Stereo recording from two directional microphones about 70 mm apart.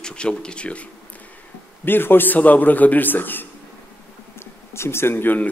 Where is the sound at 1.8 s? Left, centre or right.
Left.